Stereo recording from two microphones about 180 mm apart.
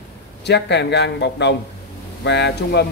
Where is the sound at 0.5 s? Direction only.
70° left (ahead or behind).